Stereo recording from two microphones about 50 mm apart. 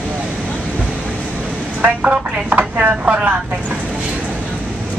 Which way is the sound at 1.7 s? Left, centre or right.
Right.